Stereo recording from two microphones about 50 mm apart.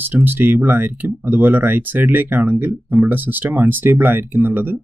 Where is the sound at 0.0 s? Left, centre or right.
Right.